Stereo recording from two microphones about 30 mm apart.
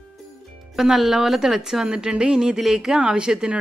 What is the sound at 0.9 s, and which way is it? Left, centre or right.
Speech, centre.